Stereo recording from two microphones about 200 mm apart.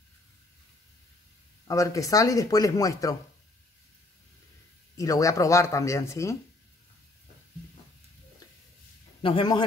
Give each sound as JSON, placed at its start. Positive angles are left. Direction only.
{"t": 1.7, "sound": "speech", "side_deg": 15}
{"t": 4.9, "sound": "speech", "side_deg": 15}
{"t": 9.2, "sound": "a man's voice", "side_deg": 25}